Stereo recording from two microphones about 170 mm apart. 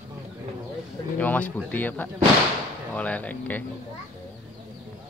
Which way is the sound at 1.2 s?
10° left (ahead or behind).